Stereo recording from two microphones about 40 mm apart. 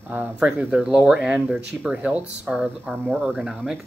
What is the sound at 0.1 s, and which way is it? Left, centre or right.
Speech, right.